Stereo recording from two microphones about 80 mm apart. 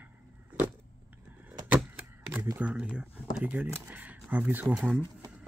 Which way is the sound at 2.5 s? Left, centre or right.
Centre.